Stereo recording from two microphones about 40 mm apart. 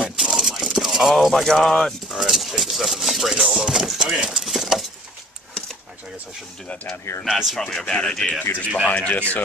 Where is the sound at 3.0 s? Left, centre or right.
Centre.